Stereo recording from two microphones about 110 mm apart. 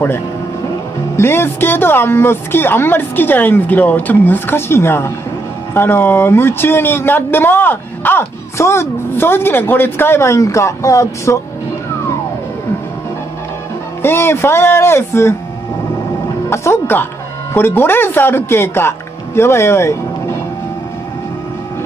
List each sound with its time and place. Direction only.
1.1 s speech: 20° left (ahead or behind)
14.0 s speech: 20° left (ahead or behind)
16.4 s speech: 25° left (ahead or behind)